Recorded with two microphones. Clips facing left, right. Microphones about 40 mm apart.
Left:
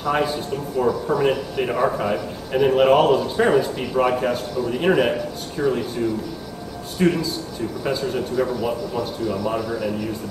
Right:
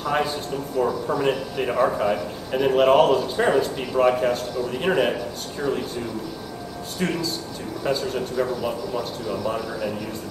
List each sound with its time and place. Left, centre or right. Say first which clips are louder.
0.0 s a man's voice: left 2 dB; centre
7.0 s a man's voice: left 6 dB; centre